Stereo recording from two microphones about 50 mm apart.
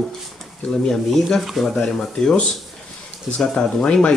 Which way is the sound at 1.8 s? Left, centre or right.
Centre.